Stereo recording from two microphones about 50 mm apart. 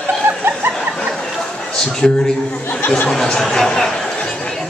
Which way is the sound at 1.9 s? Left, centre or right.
Centre.